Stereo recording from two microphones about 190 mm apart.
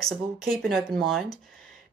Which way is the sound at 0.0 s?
Centre (ahead or behind).